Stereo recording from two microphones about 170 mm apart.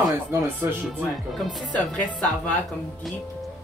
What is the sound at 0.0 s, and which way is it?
Speech, 20° right (ahead or behind).